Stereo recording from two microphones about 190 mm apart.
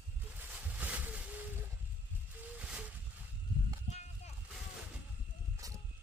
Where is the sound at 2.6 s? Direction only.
5° right (ahead or behind).